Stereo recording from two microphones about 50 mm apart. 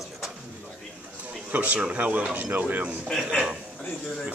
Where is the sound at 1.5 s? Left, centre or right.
Right.